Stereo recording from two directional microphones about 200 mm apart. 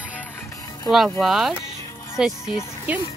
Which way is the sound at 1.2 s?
Centre (ahead or behind).